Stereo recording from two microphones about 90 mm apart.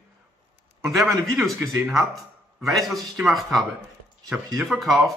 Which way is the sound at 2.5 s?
Centre (ahead or behind).